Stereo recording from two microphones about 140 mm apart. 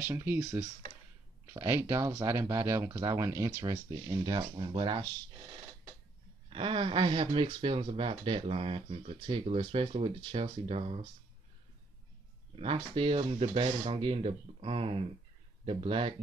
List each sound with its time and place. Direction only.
0.0 s speech: 15° right (ahead or behind); by 5.0 s 35° right (ahead or behind)
6.5 s speech: 40° right (ahead or behind)
12.5 s speech: 40° right (ahead or behind)